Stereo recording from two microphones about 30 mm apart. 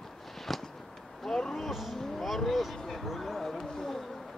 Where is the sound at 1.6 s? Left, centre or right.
Centre.